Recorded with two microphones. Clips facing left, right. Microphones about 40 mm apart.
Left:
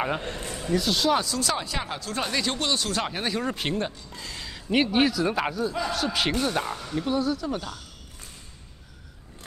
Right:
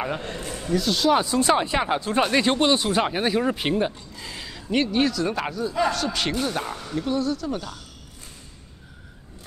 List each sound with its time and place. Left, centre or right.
0.0 s speech: centre
1.1 s speech: right; by 4.6 s centre
4.6 s speech: centre